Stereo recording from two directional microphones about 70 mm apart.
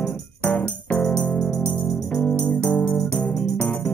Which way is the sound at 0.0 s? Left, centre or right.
Left.